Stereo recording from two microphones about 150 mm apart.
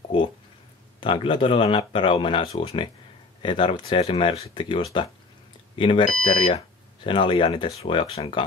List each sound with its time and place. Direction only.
1.0 s speech: 35° left (ahead or behind)